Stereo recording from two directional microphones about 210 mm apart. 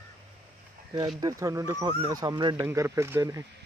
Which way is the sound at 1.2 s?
15° right (ahead or behind).